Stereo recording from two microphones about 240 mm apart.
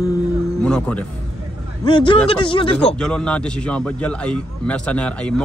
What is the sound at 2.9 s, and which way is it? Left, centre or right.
A man's voice, centre.